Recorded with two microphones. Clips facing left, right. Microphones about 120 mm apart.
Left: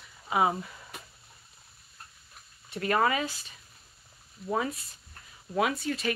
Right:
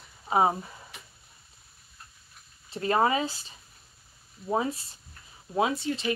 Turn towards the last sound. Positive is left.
turn(degrees=-25)  # may be behind; listen again after turning